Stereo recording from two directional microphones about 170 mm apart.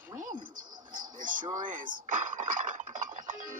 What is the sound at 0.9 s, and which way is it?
Speech, 50° right (ahead or behind).